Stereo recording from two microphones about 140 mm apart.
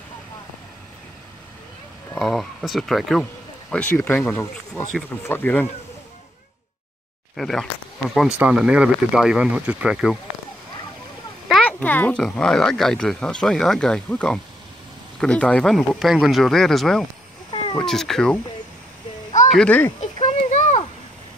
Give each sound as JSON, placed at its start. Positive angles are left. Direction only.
{"t": 2.1, "sound": "speech", "side_deg": 0}
{"t": 7.3, "sound": "speech", "side_deg": 0}
{"t": 11.4, "sound": "speech", "side_deg": 5}
{"t": 17.5, "sound": "cat", "side_deg": 35}
{"t": 17.7, "sound": "speech", "side_deg": 0}
{"t": 19.5, "sound": "speech", "side_deg": 10}
{"t": 20.4, "sound": "a sound", "side_deg": 60}